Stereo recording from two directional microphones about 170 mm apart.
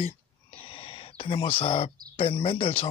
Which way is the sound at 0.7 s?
30° left (ahead or behind).